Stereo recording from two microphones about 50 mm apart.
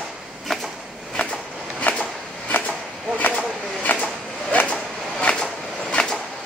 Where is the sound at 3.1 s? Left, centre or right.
Left.